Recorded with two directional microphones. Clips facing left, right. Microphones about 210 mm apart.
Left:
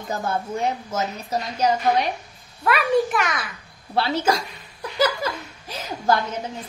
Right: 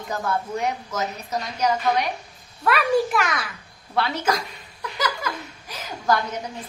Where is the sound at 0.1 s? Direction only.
25° left (ahead or behind).